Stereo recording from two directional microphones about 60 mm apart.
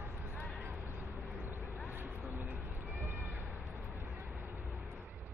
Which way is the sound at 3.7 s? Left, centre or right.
Right.